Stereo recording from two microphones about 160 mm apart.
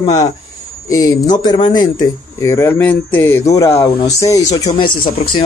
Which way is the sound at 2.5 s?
15° left (ahead or behind).